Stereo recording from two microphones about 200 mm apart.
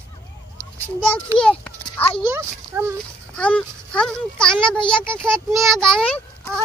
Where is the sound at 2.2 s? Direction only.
10° right (ahead or behind).